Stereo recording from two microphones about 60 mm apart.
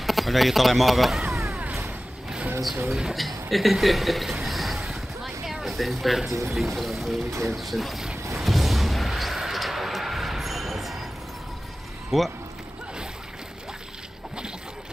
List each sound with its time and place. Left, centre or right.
0.0 s speech: centre
3.0 s a sound: centre
6.2 s speech: right
6.5 s speech: centre
8.4 s a sound: centre
12.1 s speech: centre